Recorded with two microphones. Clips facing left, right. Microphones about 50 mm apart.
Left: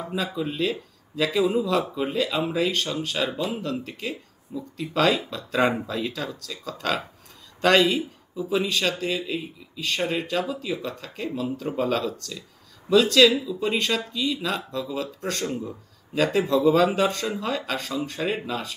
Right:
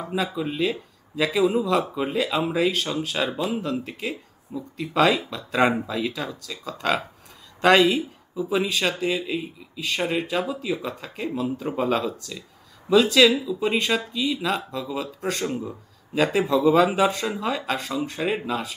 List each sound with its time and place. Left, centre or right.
0.0 s speech: centre
3.3 s speech: right
3.6 s speech: centre